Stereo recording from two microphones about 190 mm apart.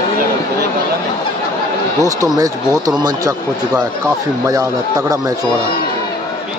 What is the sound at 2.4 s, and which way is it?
Speech, 20° right (ahead or behind).